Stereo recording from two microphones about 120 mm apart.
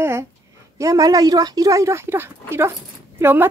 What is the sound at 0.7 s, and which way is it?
A woman's voice, 30° right (ahead or behind).